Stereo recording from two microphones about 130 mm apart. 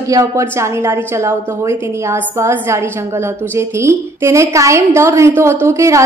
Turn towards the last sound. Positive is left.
turn(degrees=-20)  # may be behind; listen again after turning